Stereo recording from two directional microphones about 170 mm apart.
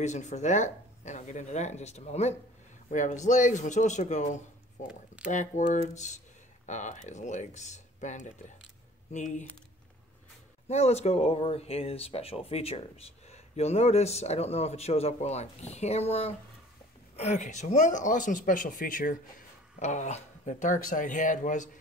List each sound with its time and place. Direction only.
0.0 s speech: 45° left (ahead or behind)
4.8 s speech: 5° right (ahead or behind)
6.6 s speech: 45° left (ahead or behind)
10.7 s speech: 40° left (ahead or behind)